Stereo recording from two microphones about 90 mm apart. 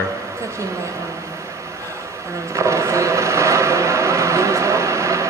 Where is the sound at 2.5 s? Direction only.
35° right (ahead or behind).